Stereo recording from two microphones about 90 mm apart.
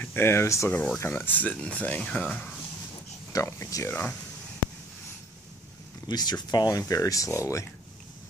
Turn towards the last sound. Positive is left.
turn(degrees=35)  # may be behind; listen again after turning